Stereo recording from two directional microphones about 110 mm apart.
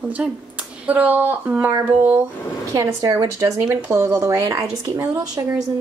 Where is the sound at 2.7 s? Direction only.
30° right (ahead or behind).